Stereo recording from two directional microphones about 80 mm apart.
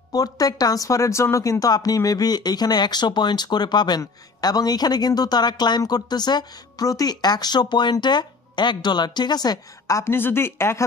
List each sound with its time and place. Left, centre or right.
0.1 s speech: left
4.0 s a woman's voice: left
9.9 s speech: left